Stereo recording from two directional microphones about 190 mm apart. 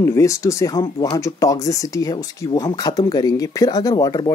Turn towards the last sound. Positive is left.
turn(degrees=20)  # may be behind; listen again after turning